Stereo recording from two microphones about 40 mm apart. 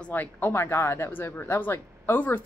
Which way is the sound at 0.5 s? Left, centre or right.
Left.